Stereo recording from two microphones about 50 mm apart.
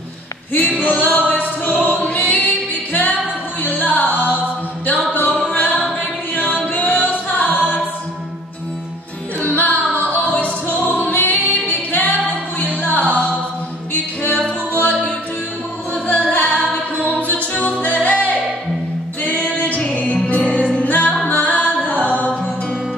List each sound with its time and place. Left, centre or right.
0.7 s a capella: left
2.1 s music: left
5.5 s music: left
6.3 s a capella: left
9.6 s music: left
14.3 s music: left